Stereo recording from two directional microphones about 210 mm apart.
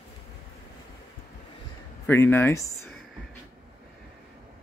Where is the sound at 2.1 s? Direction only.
10° left (ahead or behind).